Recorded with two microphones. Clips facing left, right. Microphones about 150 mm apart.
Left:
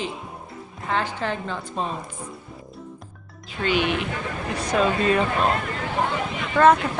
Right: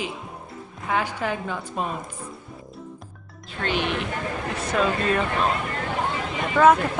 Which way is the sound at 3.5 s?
5° left (ahead or behind).